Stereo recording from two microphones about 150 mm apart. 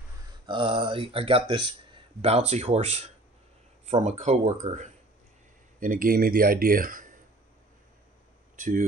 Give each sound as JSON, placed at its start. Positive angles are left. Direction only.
{"t": 0.5, "sound": "speech", "side_deg": -35}
{"t": 5.8, "sound": "speech", "side_deg": -65}
{"t": 8.5, "sound": "speech", "side_deg": -60}